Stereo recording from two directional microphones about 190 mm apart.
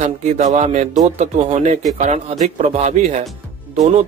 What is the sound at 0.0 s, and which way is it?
A man's voice, 35° right (ahead or behind).